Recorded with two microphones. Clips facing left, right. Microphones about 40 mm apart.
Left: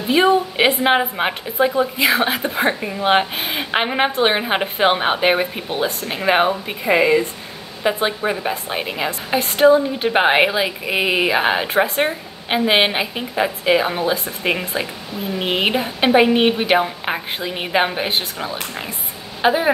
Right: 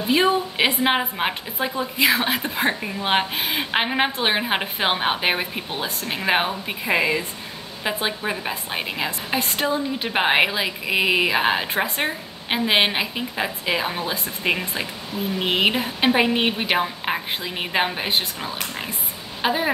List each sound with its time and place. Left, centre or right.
0.1 s a woman's voice: centre
2.1 s a woman's voice: centre